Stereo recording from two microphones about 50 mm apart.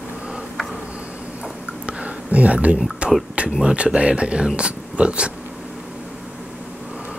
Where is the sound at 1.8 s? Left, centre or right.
Right.